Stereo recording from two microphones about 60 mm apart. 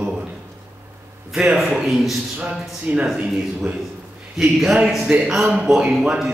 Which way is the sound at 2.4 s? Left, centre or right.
Right.